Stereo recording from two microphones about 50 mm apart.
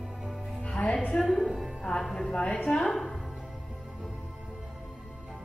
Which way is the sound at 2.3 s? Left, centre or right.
Left.